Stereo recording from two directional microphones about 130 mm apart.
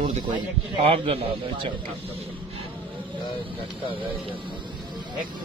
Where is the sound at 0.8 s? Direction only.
50° right (ahead or behind).